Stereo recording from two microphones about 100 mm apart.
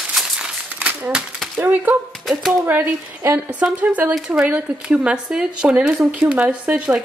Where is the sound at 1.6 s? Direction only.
20° right (ahead or behind).